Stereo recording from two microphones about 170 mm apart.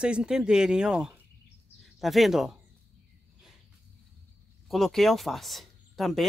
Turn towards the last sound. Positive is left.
turn(degrees=0)  # may be behind; listen again after turning